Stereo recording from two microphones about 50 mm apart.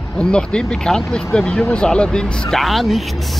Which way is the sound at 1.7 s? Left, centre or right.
Centre.